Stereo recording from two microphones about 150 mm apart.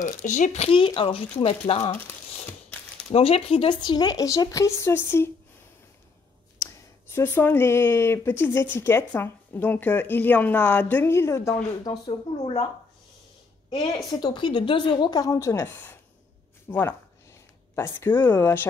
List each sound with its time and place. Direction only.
0.0 s speech: 55° left (ahead or behind); by 1.9 s 40° left (ahead or behind)
3.1 s a woman's voice: 40° left (ahead or behind); by 5.3 s 15° left (ahead or behind)
6.6 s speech: 15° left (ahead or behind); by 12.6 s 40° left (ahead or behind)
13.7 s a woman's voice: 30° left (ahead or behind)